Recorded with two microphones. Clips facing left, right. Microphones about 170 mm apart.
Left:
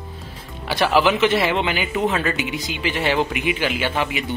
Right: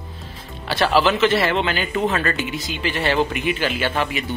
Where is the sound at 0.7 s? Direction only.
15° left (ahead or behind).